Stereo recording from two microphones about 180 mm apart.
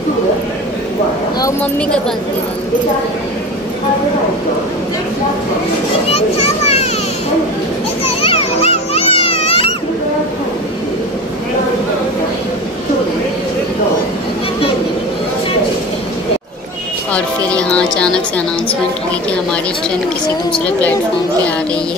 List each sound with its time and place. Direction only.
1.6 s speech: 5° left (ahead or behind)
6.1 s a child's voice: 35° left (ahead or behind)
8.2 s music: 35° left (ahead or behind)
17.1 s speech: 5° left (ahead or behind)
20.5 s speech: 10° left (ahead or behind)